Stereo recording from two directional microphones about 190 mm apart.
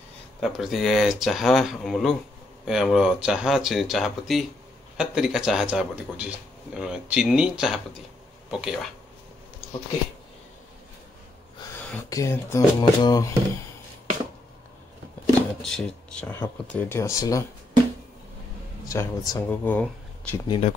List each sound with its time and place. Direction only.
0.4 s speech: centre (ahead or behind)
12.1 s speech: 15° left (ahead or behind)
15.6 s speech: 5° left (ahead or behind)
18.9 s speech: 15° left (ahead or behind)
20.4 s speech: 25° left (ahead or behind)